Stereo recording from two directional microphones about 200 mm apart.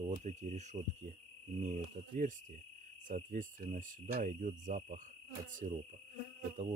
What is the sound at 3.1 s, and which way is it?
Cricket, 40° right (ahead or behind).